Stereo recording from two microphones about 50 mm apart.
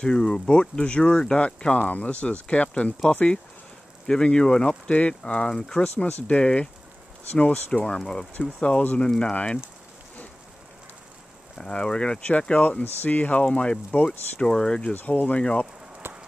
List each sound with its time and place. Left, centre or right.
0.0 s speech: centre
1.8 s speech: left
7.7 s speech: left
8.4 s speech: left
11.5 s speech: centre
15.0 s speech: left
16.0 s rain on surface: right